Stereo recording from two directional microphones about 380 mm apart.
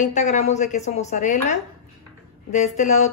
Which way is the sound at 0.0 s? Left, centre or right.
Centre.